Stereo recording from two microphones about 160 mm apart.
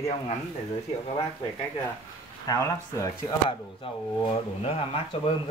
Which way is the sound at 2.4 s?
20° left (ahead or behind).